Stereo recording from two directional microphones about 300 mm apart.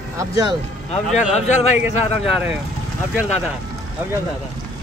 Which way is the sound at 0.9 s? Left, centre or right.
Left.